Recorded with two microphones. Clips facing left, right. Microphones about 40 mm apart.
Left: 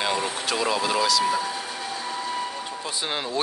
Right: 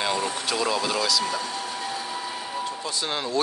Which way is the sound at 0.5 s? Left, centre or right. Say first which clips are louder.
Left 2 dB; centre.